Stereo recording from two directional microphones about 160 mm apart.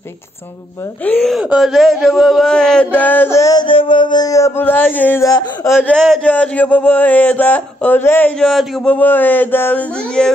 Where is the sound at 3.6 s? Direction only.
30° left (ahead or behind); by 5.3 s 15° left (ahead or behind).